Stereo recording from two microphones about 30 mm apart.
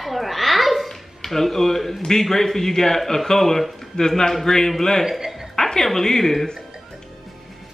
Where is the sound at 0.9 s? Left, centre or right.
Centre.